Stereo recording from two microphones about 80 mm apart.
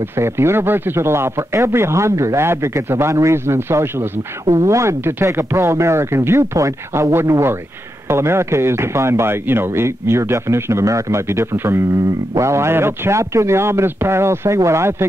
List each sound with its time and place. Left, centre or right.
0.1 s speech: right